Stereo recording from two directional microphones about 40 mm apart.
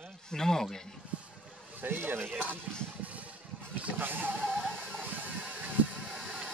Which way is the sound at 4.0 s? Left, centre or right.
Right.